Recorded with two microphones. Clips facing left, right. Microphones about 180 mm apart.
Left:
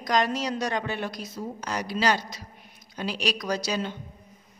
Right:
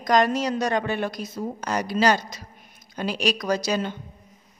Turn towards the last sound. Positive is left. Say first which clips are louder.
# right 4 dB
turn(degrees=-50)  # may be behind; listen again after turning